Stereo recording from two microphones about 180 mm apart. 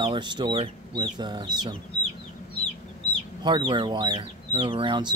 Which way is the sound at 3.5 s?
25° right (ahead or behind).